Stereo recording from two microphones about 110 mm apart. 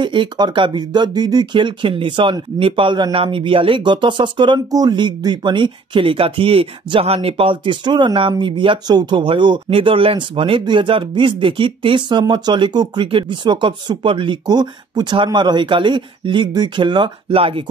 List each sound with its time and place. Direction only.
0.0 s speech: 45° right (ahead or behind)